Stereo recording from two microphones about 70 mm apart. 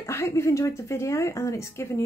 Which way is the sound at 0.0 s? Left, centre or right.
Left.